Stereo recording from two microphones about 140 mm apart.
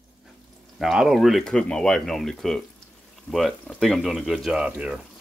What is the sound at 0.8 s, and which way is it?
Speech, 5° right (ahead or behind).